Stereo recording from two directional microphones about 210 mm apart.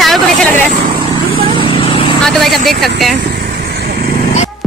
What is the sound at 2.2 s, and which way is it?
Speech, centre (ahead or behind).